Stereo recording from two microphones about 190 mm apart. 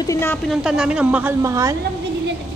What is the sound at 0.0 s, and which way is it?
Speech, 15° left (ahead or behind).